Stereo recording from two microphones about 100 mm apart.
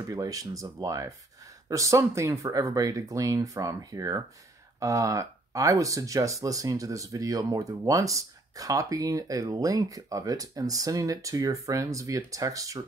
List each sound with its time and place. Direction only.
0.0 s speech: 35° right (ahead or behind)